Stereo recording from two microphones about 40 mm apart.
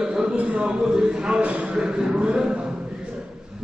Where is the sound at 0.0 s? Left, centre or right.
Right.